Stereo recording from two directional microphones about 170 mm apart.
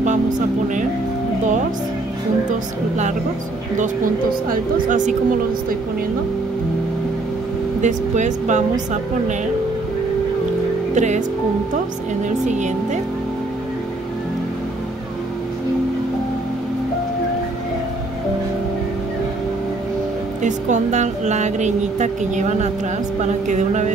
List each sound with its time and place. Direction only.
3.7 s speech: 50° right (ahead or behind)
7.8 s speech: 45° right (ahead or behind)
11.0 s speech: 45° right (ahead or behind)
12.4 s speech: 45° right (ahead or behind)
20.4 s speech: 45° right (ahead or behind)